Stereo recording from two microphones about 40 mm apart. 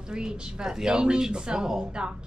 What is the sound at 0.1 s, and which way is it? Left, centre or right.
Speech, centre.